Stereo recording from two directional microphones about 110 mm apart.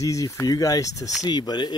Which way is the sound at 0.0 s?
30° left (ahead or behind).